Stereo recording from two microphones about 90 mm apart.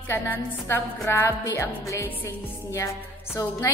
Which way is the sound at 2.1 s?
20° left (ahead or behind).